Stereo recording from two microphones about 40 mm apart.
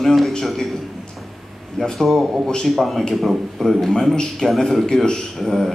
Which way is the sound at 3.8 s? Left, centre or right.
Centre.